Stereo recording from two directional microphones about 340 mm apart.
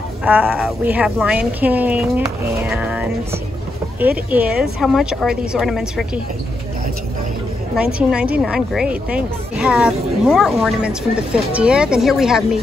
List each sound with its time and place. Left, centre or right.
0.2 s a woman's voice: centre
7.7 s a woman's voice: centre